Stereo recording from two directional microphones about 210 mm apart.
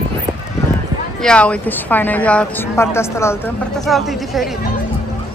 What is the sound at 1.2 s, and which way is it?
Speech, 5° left (ahead or behind).